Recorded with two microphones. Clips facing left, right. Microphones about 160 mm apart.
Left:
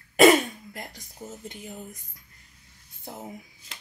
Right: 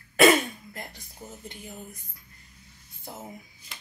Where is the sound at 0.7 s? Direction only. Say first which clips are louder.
Left 1 dB; 15° left (ahead or behind).